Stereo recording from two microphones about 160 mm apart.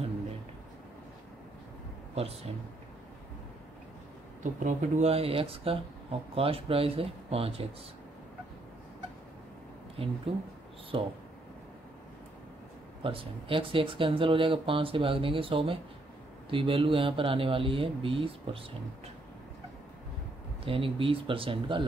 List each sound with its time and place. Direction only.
2.1 s speech: 40° right (ahead or behind)
4.4 s speech: 50° right (ahead or behind)
10.0 s speech: 35° right (ahead or behind)
13.0 s speech: 35° right (ahead or behind)
20.6 s speech: 35° right (ahead or behind)